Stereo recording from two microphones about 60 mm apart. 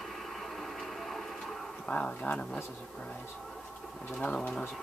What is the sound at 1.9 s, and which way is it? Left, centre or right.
Speech, centre.